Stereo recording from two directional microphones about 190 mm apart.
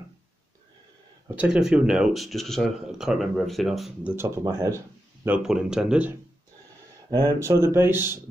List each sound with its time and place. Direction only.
1.3 s speech: 5° right (ahead or behind)
7.1 s speech: 20° right (ahead or behind)